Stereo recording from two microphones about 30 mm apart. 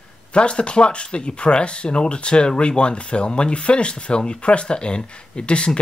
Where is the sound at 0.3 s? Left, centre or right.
Left.